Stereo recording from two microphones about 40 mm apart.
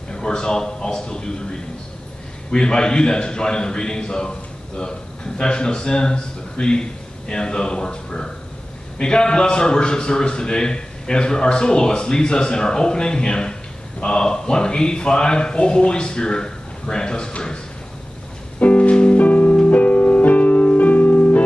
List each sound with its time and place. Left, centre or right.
0.1 s a man's voice: centre
18.6 s music: left